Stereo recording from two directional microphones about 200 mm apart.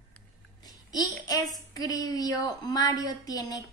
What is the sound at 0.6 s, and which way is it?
A child's voice, 20° left (ahead or behind).